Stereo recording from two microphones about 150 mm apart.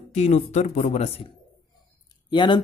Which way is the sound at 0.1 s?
50° left (ahead or behind).